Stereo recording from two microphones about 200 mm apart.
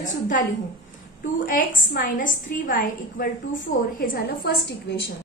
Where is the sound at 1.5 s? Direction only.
45° left (ahead or behind).